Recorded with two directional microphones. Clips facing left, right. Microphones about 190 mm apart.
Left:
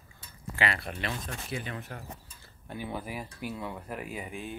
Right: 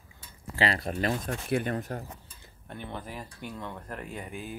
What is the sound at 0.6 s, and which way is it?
Speech, 35° right (ahead or behind).